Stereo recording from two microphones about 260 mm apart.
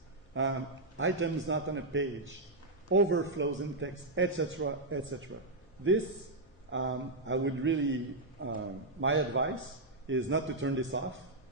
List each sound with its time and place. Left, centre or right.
0.3 s a man's voice: right
6.7 s a man's voice: right